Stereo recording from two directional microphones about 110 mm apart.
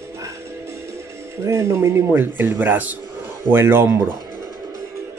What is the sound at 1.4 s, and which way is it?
Speech, 25° right (ahead or behind).